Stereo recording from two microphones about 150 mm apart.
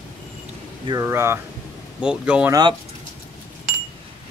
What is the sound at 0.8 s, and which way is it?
Speech, 20° right (ahead or behind).